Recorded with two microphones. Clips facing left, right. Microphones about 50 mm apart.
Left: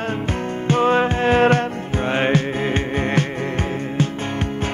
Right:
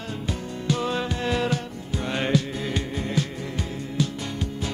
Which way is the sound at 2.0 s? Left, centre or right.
Left.